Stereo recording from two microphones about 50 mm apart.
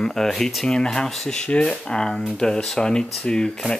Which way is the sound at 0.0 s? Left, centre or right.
Centre.